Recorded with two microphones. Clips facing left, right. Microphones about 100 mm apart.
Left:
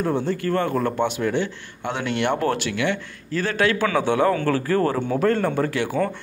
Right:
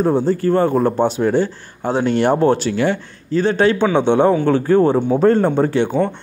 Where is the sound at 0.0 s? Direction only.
35° right (ahead or behind).